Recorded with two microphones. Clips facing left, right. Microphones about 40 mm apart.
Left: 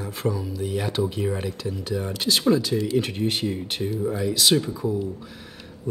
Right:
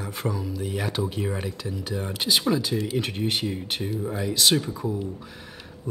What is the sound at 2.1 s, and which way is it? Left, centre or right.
Speech, centre.